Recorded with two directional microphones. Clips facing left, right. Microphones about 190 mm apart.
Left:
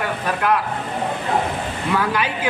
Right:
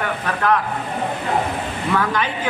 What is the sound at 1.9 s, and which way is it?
Speech, 10° left (ahead or behind).